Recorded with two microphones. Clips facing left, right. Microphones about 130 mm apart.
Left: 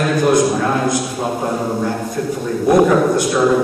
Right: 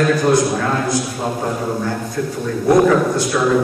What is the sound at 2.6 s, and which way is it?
Speech, 15° left (ahead or behind).